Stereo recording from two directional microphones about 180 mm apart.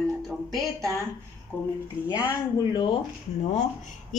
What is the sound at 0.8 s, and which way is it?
Speech, 15° right (ahead or behind).